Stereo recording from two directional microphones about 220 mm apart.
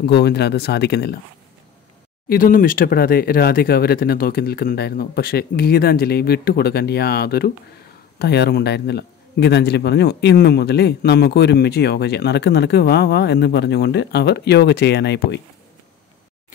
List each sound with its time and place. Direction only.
0.0 s a man's voice: 45° left (ahead or behind)
2.2 s a man's voice: 40° left (ahead or behind)